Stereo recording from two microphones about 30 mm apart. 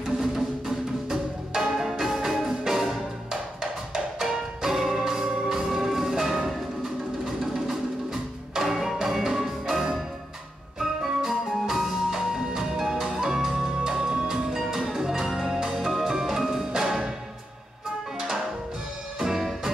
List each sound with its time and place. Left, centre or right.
0.0 s music: centre
13.2 s music: centre
19.1 s music: centre